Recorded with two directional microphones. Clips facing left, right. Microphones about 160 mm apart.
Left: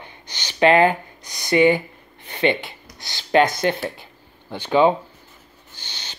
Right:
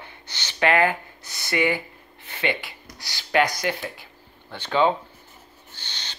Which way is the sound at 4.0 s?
15° left (ahead or behind).